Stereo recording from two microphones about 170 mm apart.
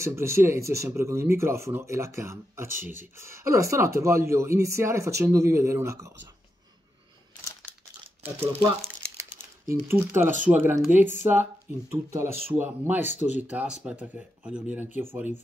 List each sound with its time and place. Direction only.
0.0 s speech: 15° right (ahead or behind)
7.7 s crumpling: 10° left (ahead or behind)
8.6 s crumpling: 15° right (ahead or behind)
9.8 s speech: 15° right (ahead or behind)